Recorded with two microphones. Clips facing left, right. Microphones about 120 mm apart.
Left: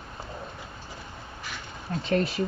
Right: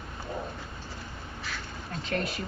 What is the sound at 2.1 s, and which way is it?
Speech, 30° left (ahead or behind).